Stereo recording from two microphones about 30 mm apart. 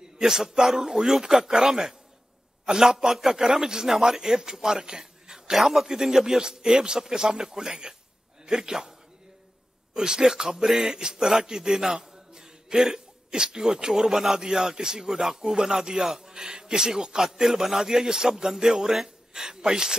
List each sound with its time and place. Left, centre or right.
0.2 s a man's voice: centre
9.9 s a man's voice: right
17.2 s a man's voice: centre